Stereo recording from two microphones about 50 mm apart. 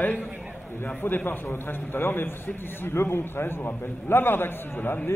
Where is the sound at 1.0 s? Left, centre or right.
Left.